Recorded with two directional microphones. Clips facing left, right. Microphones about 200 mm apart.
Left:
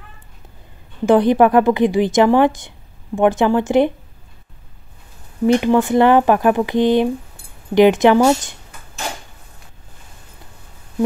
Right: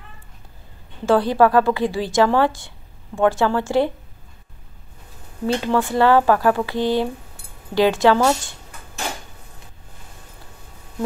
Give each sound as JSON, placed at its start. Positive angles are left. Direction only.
{"t": 1.0, "sound": "speech", "side_deg": 20}
{"t": 5.5, "sound": "speech", "side_deg": 15}